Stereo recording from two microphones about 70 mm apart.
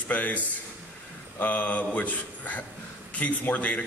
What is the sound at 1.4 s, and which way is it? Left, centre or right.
A man's voice, left.